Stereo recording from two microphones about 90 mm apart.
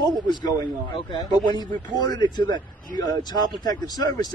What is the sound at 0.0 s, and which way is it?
A man's voice, 50° left (ahead or behind).